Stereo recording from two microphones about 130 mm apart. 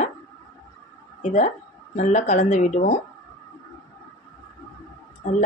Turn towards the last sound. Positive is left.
turn(degrees=75)  # may be behind; listen again after turning